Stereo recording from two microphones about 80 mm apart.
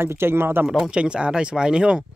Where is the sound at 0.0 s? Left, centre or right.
Right.